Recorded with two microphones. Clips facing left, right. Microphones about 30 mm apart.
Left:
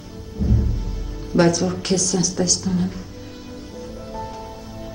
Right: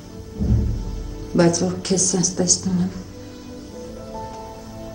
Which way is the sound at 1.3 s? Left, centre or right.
Left.